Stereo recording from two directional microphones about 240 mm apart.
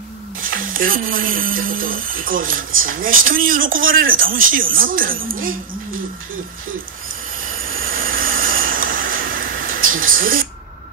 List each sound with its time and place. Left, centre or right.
0.4 s speech: right
7.5 s train: right